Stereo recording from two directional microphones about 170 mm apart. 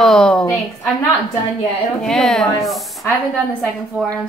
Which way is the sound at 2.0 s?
5° left (ahead or behind).